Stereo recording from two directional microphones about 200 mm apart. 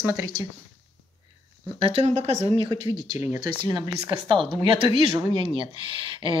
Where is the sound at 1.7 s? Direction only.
30° right (ahead or behind).